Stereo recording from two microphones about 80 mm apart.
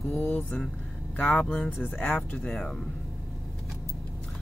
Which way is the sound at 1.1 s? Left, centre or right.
Centre.